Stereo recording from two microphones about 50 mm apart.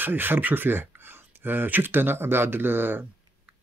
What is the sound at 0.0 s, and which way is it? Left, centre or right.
Speech, right.